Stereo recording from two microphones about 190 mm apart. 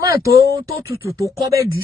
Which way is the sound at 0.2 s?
15° right (ahead or behind).